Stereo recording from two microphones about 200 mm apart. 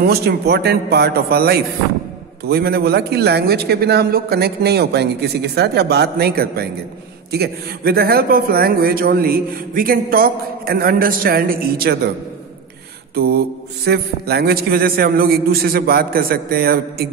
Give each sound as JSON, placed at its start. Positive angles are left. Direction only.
{"t": 0.0, "sound": "a man's voice", "side_deg": -50}
{"t": 13.1, "sound": "mantra", "side_deg": -50}
{"t": 13.8, "sound": "a man's voice", "side_deg": -55}